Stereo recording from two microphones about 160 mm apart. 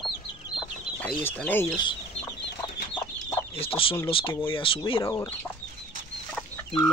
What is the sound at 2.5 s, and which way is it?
Chicken, 20° left (ahead or behind).